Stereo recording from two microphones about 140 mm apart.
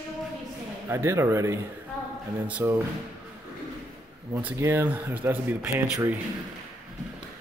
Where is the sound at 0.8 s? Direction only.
20° right (ahead or behind).